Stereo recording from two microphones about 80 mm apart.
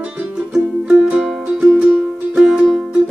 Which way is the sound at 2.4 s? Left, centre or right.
Centre.